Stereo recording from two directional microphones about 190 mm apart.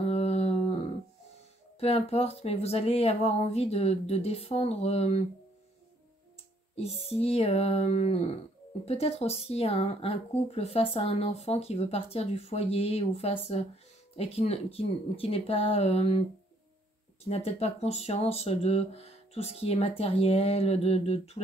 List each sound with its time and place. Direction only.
0.0 s a sound: 35° left (ahead or behind)
1.8 s speech: 30° left (ahead or behind)
6.7 s speech: 30° left (ahead or behind)